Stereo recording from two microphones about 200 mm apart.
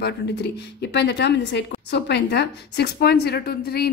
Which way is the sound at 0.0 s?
55° left (ahead or behind).